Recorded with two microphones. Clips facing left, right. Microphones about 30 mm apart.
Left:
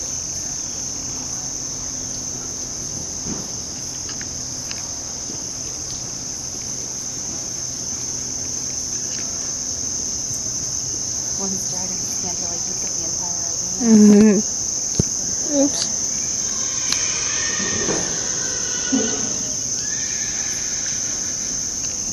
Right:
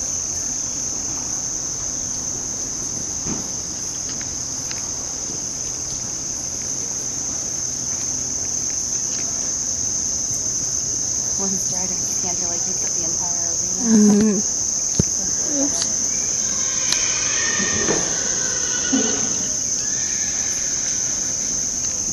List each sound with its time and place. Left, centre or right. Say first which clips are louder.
13.7 s cricket: left 4 dB; centre
15.5 s cricket: left 6 dB; centre
16.8 s train: right 1 dB; centre